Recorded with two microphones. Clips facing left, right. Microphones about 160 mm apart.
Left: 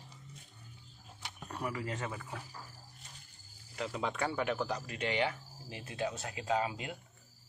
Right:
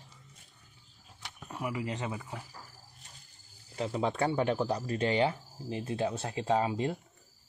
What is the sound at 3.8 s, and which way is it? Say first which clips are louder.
A man's voice: right 5 dB; 30° right (ahead or behind).